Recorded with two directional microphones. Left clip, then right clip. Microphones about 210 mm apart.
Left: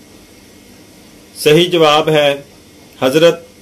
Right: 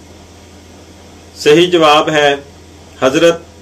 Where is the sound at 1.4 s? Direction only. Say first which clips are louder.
Right 1 dB; 40° left (ahead or behind).